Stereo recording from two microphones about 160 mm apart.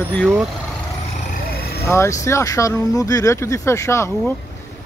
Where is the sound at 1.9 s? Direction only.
20° left (ahead or behind).